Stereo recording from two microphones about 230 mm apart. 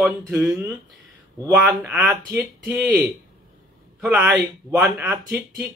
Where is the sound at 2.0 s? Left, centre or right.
Centre.